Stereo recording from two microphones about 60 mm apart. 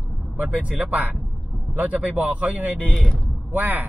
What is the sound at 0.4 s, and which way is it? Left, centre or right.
Speech, right.